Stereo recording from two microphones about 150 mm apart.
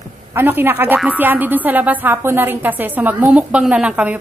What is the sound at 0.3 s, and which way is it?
Speech, 15° right (ahead or behind).